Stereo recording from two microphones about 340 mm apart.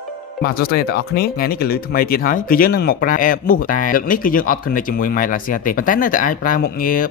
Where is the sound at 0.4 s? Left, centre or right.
Left.